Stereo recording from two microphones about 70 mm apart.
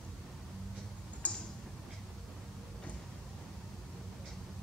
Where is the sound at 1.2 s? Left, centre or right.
Left.